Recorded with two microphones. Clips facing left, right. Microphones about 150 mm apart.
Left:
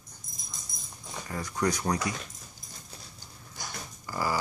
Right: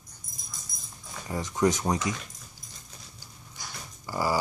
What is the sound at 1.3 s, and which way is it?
Speech, 20° right (ahead or behind).